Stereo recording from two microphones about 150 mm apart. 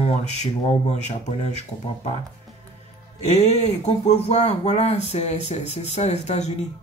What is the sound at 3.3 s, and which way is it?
Speech, 50° left (ahead or behind).